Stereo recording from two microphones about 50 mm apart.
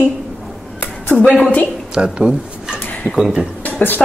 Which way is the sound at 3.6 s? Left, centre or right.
Left.